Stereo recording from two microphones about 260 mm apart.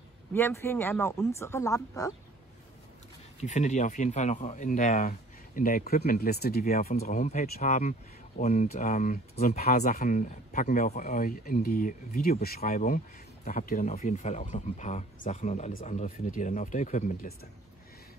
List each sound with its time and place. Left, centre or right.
0.3 s speech: centre
3.3 s speech: left